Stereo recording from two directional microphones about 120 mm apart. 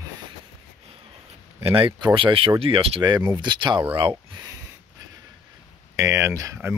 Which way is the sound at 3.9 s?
45° right (ahead or behind).